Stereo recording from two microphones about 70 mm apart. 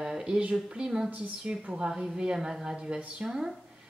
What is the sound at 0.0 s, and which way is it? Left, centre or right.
Speech, centre.